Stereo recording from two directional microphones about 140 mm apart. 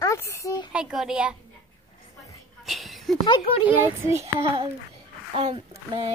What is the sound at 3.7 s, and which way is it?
Speech, 15° right (ahead or behind).